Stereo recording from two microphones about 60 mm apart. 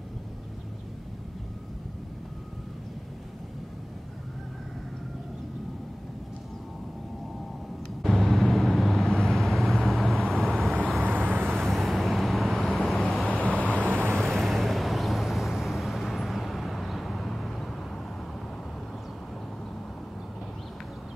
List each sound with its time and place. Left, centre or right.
8.0 s vehicle: centre
11.1 s vehicle: right
11.5 s vehicle: centre
13.4 s vehicle: centre
14.1 s vehicle: centre